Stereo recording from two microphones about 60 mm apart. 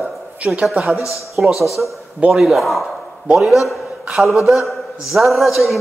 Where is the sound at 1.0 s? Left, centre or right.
Left.